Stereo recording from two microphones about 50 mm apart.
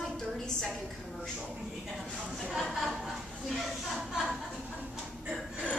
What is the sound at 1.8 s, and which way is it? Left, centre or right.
A woman's voice, centre.